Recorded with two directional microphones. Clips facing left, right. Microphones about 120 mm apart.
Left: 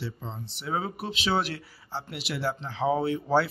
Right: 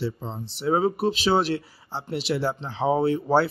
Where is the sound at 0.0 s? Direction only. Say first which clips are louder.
Right 7 dB; 35° right (ahead or behind).